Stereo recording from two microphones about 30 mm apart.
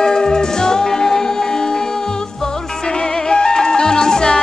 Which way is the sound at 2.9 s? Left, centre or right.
Left.